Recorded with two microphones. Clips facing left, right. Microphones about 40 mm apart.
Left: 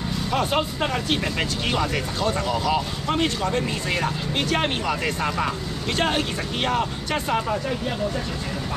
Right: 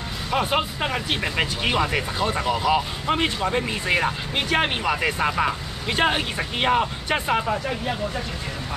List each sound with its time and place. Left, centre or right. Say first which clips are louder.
0.3 s speech: right 1 dB; centre